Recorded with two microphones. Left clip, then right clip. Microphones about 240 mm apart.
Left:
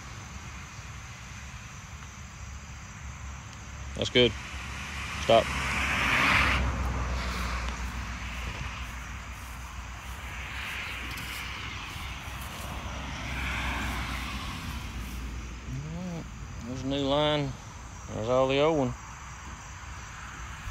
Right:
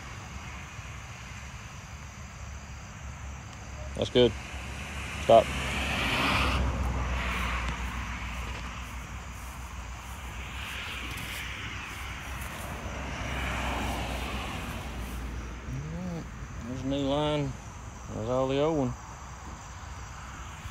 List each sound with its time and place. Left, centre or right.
3.9 s vehicle: centre
10.4 s vehicle: centre
11.0 s vehicle: centre
13.1 s vehicle: centre
16.7 s a sound: left